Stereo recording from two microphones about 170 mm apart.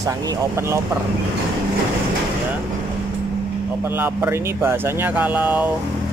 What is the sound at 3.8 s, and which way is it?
Speech, 10° right (ahead or behind).